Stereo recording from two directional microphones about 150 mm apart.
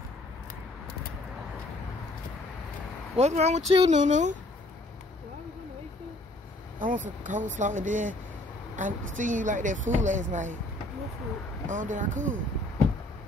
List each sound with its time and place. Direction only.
3.2 s speech: 45° right (ahead or behind)
4.0 s speech: 55° right (ahead or behind)
6.8 s speech: 65° right (ahead or behind)
11.6 s speech: 60° right (ahead or behind)